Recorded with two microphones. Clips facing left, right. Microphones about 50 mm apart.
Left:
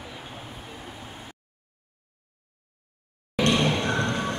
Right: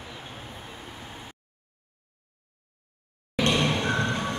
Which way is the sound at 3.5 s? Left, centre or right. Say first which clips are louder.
Left 1 dB; centre.